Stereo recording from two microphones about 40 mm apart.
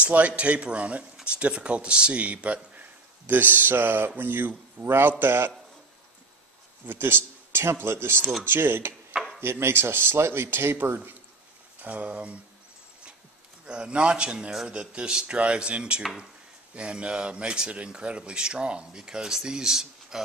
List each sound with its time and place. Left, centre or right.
0.0 s a man's voice: right
3.3 s a sound: right
4.8 s speech: right
6.9 s speech: right
9.4 s speech: right
11.8 s a man's voice: right
13.7 s speech: right